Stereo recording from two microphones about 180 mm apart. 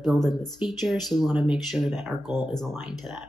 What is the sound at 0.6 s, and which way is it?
Speech, centre (ahead or behind).